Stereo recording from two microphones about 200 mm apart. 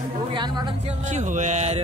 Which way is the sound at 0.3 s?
20° right (ahead or behind).